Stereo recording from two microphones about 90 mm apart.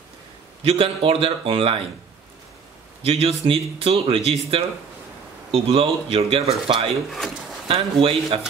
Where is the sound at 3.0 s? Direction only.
90° right.